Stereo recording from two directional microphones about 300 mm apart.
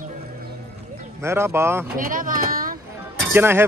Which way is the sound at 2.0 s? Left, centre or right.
Right.